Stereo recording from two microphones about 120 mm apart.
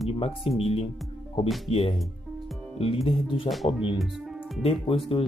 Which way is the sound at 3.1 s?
50° left (ahead or behind).